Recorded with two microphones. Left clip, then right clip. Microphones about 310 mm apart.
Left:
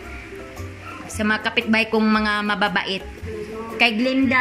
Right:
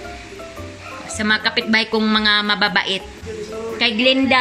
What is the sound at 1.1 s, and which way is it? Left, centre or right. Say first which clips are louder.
A woman's voice: right 3 dB; centre.